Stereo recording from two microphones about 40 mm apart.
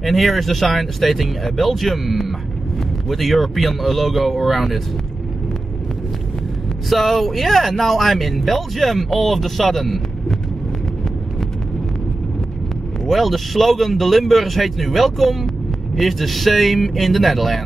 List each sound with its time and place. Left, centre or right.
0.0 s speech: centre
6.9 s speech: centre
13.0 s speech: centre